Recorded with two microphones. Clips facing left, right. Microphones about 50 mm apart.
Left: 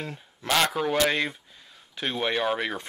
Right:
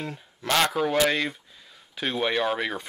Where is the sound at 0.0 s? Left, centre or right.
Centre.